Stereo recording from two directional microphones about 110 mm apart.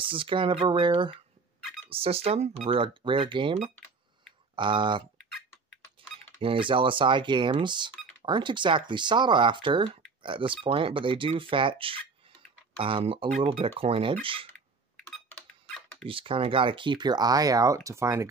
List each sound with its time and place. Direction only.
0.0 s speech: 50° right (ahead or behind)
1.9 s speech: 60° right (ahead or behind)
4.6 s speech: 45° right (ahead or behind)
6.4 s speech: 50° right (ahead or behind)
15.0 s a sound: 10° left (ahead or behind)
16.1 s speech: 55° right (ahead or behind); by 18.3 s 30° right (ahead or behind)